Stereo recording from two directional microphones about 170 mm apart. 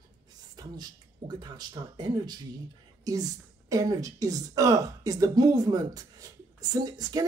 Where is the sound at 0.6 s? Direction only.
25° right (ahead or behind).